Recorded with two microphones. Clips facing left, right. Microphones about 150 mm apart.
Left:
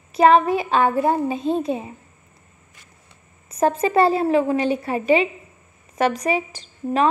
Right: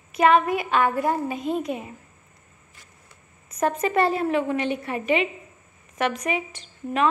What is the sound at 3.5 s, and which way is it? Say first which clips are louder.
A woman's voice: left 4 dB; 30° left (ahead or behind).